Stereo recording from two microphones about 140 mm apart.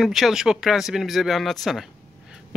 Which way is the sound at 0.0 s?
Centre (ahead or behind).